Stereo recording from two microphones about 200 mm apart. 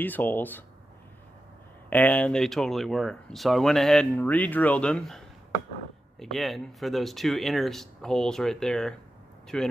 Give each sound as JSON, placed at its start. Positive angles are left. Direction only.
{"t": 0.0, "sound": "speech", "side_deg": 10}
{"t": 1.9, "sound": "speech", "side_deg": 10}